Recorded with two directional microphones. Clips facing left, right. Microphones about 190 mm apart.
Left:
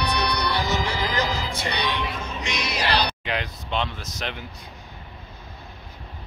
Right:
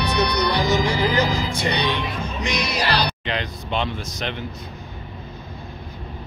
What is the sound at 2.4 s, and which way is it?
Music, 35° right (ahead or behind).